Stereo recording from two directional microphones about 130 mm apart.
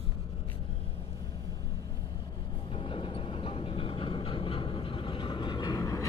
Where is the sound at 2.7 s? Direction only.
45° left (ahead or behind).